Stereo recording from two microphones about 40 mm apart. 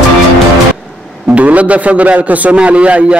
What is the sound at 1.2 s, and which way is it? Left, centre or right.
A man's voice, right.